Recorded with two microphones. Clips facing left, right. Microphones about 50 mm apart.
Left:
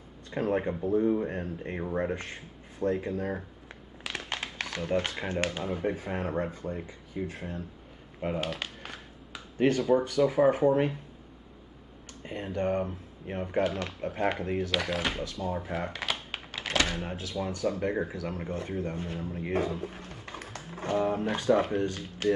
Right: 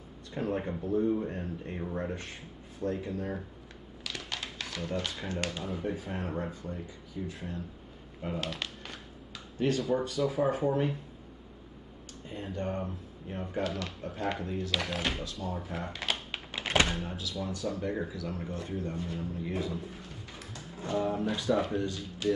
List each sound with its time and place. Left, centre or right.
0.3 s speech: left
4.0 s a sound: left
5.7 s speech: left
8.4 s a sound: left
10.0 s speech: left
12.4 s speech: left
14.8 s speech: centre
15.4 s speech: left
15.9 s typing: centre
16.9 s speech: left